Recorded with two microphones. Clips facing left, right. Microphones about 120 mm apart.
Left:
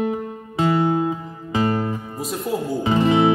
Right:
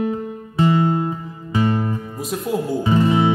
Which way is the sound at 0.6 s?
15° left (ahead or behind).